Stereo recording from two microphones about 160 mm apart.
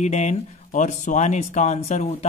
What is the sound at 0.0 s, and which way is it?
Speech, 45° left (ahead or behind).